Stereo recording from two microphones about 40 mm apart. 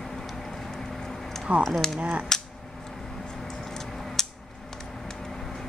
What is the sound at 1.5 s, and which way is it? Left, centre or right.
Speech, right.